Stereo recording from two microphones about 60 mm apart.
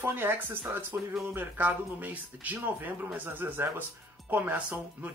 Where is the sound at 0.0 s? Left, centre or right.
Right.